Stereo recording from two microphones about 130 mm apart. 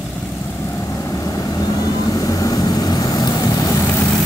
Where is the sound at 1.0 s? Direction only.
25° left (ahead or behind).